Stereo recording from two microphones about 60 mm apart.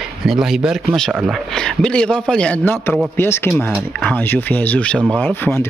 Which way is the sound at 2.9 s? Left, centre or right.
Left.